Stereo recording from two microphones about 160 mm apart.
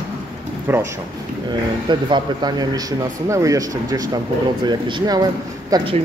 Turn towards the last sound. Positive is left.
turn(degrees=-25)  # may be behind; listen again after turning